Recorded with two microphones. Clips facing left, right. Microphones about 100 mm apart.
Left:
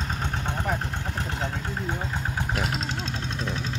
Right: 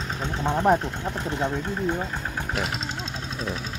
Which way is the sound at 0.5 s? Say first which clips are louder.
Right 12 dB; 45° right (ahead or behind).